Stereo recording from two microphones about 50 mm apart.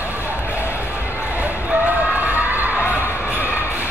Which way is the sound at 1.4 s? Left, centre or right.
Right.